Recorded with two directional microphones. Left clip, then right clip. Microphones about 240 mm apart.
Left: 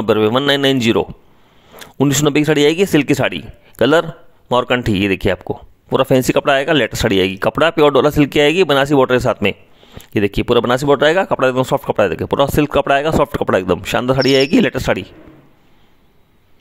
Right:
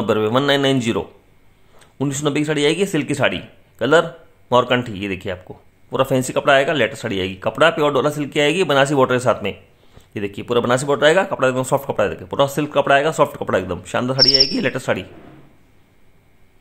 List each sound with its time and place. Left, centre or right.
0.0 s speech: left